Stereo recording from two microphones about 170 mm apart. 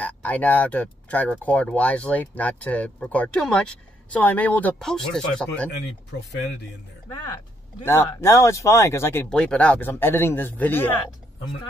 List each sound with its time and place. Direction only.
0.0 s speech: 10° left (ahead or behind)
6.1 s speech: 75° left (ahead or behind)
7.8 s speech: 15° left (ahead or behind)